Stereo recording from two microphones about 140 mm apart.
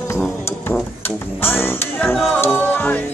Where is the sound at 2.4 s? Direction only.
15° left (ahead or behind).